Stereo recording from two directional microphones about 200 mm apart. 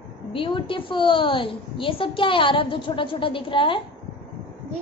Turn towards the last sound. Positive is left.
turn(degrees=25)  # may be behind; listen again after turning